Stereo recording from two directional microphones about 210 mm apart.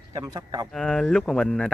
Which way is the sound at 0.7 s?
Centre (ahead or behind).